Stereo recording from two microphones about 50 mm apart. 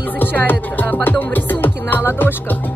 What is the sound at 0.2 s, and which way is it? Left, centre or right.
Music, left.